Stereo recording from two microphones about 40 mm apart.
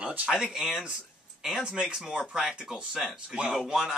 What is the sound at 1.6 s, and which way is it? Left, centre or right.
Speech, right.